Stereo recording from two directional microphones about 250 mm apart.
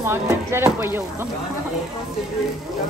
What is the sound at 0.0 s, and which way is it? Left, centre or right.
Speech, centre.